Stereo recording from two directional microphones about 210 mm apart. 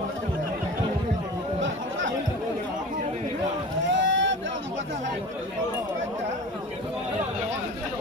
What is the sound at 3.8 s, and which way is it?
Vehicle, 60° right (ahead or behind).